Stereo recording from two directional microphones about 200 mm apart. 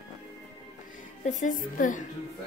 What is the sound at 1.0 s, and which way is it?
A woman's voice, 40° left (ahead or behind).